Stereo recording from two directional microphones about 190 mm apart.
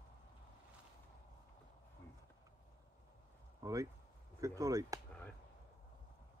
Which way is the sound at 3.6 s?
15° right (ahead or behind).